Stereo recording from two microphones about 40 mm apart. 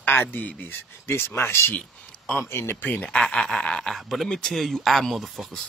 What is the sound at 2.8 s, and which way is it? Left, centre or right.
Speech, left.